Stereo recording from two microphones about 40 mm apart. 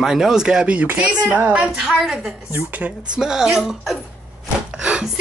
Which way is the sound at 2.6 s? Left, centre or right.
Right.